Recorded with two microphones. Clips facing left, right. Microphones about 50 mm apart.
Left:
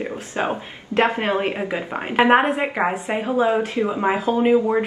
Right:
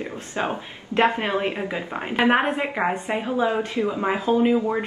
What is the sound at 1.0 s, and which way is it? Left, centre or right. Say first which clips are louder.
A woman's voice: left 1 dB; centre.